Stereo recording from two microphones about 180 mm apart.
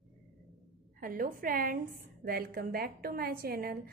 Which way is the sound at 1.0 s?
50° right (ahead or behind).